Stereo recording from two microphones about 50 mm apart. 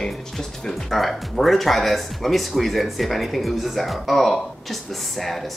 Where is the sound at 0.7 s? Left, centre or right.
Centre.